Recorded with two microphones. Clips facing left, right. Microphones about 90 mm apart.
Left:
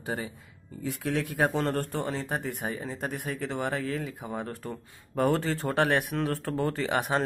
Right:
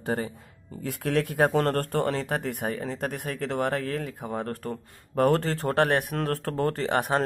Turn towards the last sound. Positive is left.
turn(degrees=-40)  # may be behind; listen again after turning